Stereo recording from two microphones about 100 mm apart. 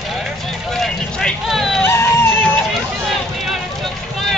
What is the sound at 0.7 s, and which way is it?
Vehicle, centre (ahead or behind).